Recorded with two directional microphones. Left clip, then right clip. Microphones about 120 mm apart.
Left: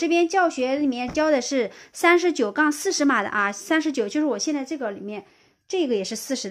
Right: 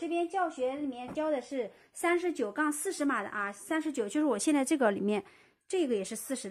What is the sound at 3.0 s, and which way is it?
Speech, 80° left.